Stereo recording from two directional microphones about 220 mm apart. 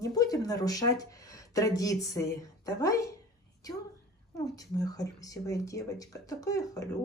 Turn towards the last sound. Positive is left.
turn(degrees=15)  # may be behind; listen again after turning